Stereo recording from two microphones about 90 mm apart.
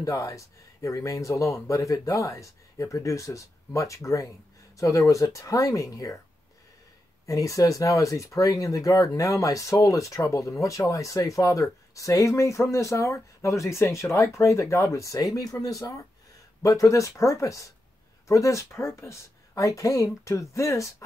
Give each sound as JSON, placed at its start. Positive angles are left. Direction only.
{"t": 0.0, "sound": "speech", "side_deg": 35}
{"t": 7.2, "sound": "speech", "side_deg": 40}